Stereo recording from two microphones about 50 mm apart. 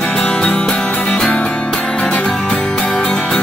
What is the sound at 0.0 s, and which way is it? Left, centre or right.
Music, centre.